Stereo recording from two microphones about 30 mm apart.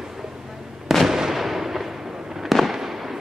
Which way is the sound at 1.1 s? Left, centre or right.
Centre.